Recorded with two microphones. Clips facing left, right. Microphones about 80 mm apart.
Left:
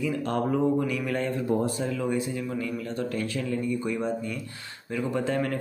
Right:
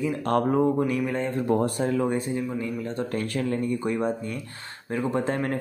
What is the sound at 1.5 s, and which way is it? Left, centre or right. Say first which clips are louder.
Speech: right 6 dB; right.